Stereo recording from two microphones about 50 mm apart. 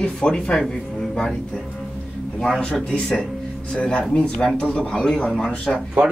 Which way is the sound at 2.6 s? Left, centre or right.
Left.